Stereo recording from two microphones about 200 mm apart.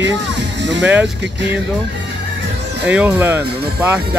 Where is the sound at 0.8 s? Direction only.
5° right (ahead or behind).